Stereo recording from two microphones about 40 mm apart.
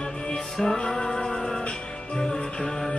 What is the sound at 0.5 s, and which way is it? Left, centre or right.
Music, centre.